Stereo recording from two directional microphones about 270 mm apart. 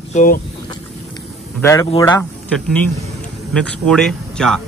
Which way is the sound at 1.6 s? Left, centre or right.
Centre.